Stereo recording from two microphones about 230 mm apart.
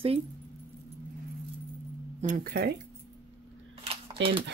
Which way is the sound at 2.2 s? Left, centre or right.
Right.